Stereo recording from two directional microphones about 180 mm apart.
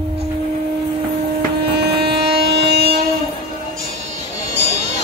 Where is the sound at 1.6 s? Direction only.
65° right (ahead or behind).